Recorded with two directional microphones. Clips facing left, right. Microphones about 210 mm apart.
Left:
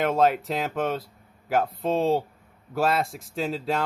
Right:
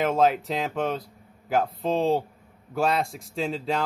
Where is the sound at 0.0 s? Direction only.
Centre (ahead or behind).